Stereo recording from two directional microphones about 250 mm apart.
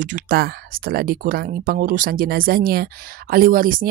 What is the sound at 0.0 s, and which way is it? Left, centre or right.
Speech, right.